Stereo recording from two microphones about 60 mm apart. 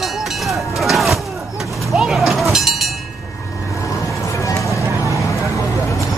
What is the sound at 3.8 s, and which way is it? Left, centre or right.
Vehicle, left.